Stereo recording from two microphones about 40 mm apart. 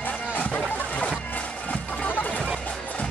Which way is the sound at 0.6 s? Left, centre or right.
Left.